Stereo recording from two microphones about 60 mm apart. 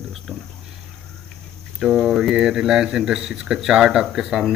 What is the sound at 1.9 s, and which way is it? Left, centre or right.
Speech, centre.